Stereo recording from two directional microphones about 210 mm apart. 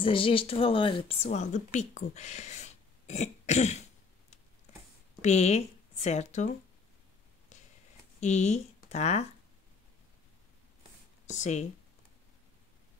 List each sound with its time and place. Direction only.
0.0 s a woman's voice: 25° left (ahead or behind)
5.2 s speech: 30° left (ahead or behind)
8.2 s speech: 35° left (ahead or behind)
11.2 s a woman's voice: 35° left (ahead or behind)